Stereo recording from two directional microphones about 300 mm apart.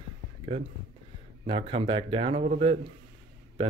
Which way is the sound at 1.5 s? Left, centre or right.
Centre.